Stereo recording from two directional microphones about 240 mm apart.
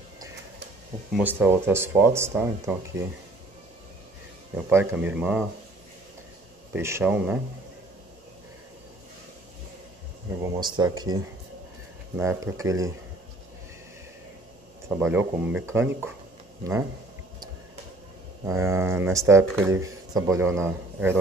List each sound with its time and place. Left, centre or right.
1.1 s speech: centre
4.6 s speech: centre
6.7 s speech: centre
10.4 s speech: centre
12.2 s speech: centre
15.0 s speech: centre
18.4 s speech: centre